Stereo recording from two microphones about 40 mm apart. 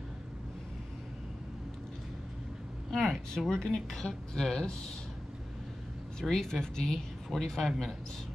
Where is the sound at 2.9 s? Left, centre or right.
Centre.